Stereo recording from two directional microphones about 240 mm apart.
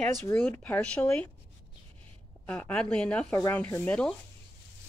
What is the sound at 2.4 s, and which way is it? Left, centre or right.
Speech, centre.